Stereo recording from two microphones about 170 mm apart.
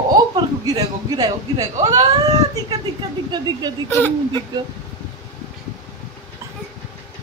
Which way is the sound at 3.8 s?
15° left (ahead or behind).